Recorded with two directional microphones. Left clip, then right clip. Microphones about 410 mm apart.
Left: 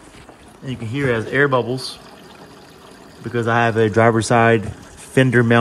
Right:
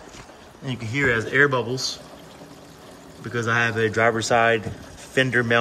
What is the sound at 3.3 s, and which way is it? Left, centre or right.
Speech, centre.